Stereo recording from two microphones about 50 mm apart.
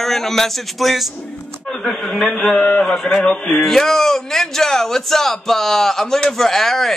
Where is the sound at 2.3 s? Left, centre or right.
Centre.